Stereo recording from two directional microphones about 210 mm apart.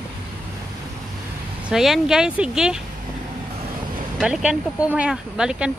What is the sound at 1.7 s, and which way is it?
Speech, centre (ahead or behind).